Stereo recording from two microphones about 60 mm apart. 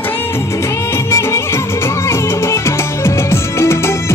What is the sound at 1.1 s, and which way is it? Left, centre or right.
Music, left.